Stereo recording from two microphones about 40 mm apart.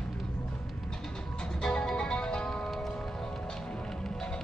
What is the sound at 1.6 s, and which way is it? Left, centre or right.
Music, centre.